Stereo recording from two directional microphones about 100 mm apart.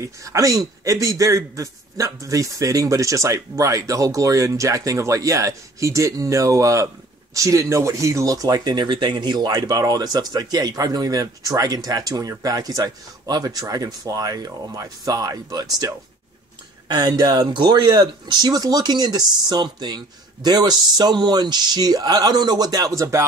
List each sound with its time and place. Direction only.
0.0 s speech: 30° right (ahead or behind)